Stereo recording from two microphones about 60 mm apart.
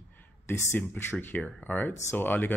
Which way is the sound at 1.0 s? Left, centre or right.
Left.